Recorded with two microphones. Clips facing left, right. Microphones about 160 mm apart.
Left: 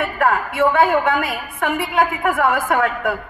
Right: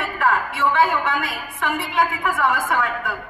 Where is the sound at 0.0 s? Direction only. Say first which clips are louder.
Left 3 dB; 55° left (ahead or behind).